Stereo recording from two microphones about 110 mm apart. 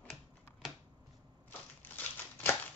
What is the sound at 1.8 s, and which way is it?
Crumpling, 15° left (ahead or behind).